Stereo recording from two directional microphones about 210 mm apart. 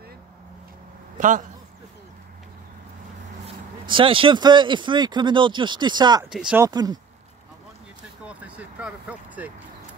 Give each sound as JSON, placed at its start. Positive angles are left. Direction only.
{"t": 1.1, "sound": "a man's voice", "side_deg": -40}
{"t": 3.4, "sound": "speech", "side_deg": -25}
{"t": 6.2, "sound": "speech", "side_deg": -5}
{"t": 6.6, "sound": "speech", "side_deg": -20}
{"t": 8.3, "sound": "speech", "side_deg": -5}